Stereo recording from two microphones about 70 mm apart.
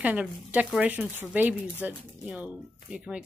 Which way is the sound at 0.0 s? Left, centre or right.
Right.